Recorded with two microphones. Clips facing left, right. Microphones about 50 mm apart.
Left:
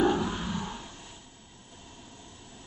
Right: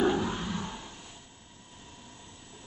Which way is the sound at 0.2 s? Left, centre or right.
Centre.